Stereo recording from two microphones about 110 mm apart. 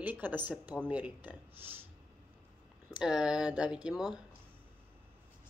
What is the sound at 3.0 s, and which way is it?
Speech, 5° right (ahead or behind).